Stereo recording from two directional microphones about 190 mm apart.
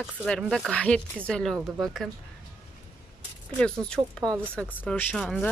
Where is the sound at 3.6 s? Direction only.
5° left (ahead or behind).